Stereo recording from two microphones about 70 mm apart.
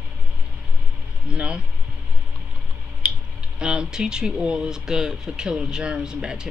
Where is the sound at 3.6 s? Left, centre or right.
Centre.